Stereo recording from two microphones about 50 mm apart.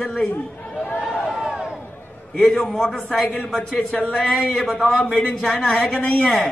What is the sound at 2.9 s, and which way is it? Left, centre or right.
Speech, left.